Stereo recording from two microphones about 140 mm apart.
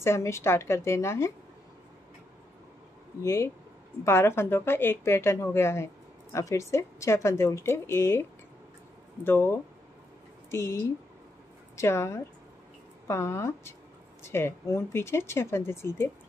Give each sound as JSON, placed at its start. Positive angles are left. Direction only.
{"t": 0.0, "sound": "a woman's voice", "side_deg": 20}
{"t": 3.2, "sound": "a woman's voice", "side_deg": 20}